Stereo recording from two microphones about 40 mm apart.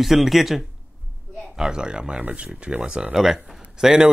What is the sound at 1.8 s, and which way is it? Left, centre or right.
A man's voice, right.